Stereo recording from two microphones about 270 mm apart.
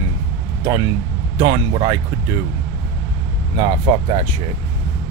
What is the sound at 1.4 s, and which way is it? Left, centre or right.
Speech, centre.